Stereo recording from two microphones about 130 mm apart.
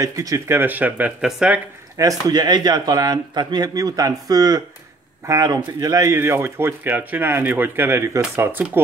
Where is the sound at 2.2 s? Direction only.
30° right (ahead or behind).